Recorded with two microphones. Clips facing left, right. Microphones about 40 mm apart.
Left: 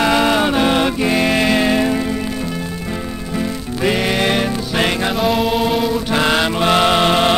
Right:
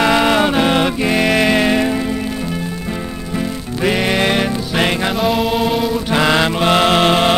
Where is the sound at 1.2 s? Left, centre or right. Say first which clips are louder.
Right 3 dB; right.